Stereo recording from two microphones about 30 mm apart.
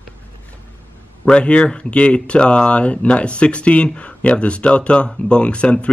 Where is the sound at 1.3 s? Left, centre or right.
Left.